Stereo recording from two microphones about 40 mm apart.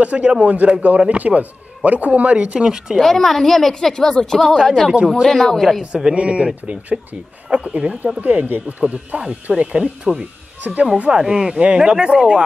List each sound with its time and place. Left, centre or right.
0.0 s speech: right
2.6 s speech: centre
3.0 s a woman's voice: centre
4.6 s speech: centre
6.1 s speech: right
8.2 s speech: right; by 10.2 s centre
10.6 s speech: right
11.1 s speech: centre